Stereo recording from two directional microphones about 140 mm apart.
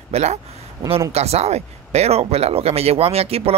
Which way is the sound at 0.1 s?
50° right (ahead or behind).